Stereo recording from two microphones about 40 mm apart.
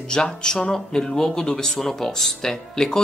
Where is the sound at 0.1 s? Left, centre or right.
Centre.